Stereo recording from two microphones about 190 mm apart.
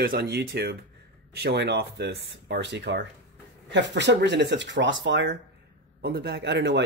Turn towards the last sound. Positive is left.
turn(degrees=-65)  # may be behind; listen again after turning